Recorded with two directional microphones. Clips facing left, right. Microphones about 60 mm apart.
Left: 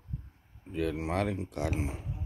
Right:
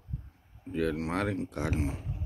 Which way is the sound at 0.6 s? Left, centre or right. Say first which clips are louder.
Right 2 dB; centre.